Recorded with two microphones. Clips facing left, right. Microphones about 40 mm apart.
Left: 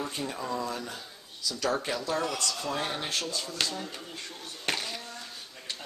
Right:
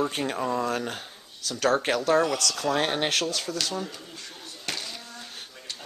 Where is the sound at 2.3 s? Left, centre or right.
Right.